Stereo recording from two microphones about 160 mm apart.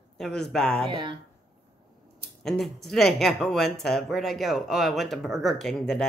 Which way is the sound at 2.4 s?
Centre (ahead or behind).